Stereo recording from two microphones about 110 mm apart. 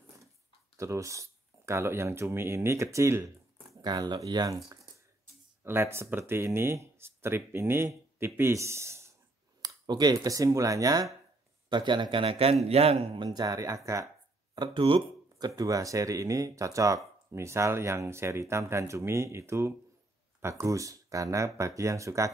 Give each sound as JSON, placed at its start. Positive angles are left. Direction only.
{"t": 0.7, "sound": "speech", "side_deg": -30}
{"t": 3.8, "sound": "speech", "side_deg": -40}
{"t": 5.6, "sound": "speech", "side_deg": -20}
{"t": 9.6, "sound": "speech", "side_deg": -35}
{"t": 11.7, "sound": "a man's voice", "side_deg": -45}
{"t": 13.1, "sound": "speech", "side_deg": -40}
{"t": 14.5, "sound": "speech", "side_deg": -45}
{"t": 15.0, "sound": "speech", "side_deg": -35}